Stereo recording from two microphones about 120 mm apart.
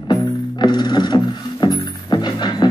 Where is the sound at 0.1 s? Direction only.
35° left (ahead or behind).